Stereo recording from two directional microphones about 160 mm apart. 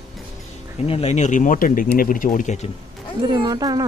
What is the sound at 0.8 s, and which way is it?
Speech, 40° left (ahead or behind).